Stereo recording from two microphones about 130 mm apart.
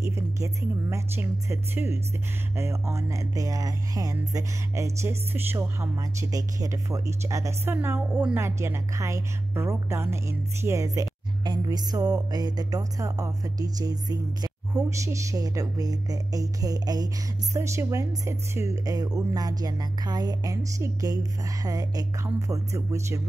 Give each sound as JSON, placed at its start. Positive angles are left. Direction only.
{"t": 0.0, "sound": "a woman's voice", "side_deg": -20}